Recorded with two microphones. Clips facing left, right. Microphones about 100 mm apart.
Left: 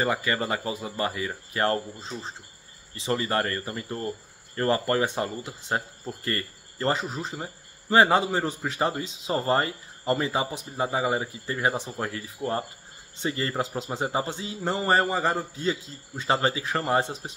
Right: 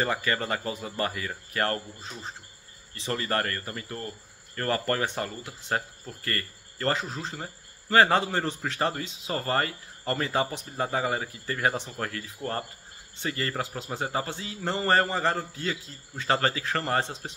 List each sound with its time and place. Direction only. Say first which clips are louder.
0.0 s a man's voice: left 2 dB; 15° left (ahead or behind)